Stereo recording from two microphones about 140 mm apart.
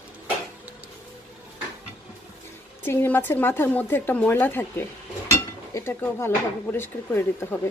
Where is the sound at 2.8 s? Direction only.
15° left (ahead or behind).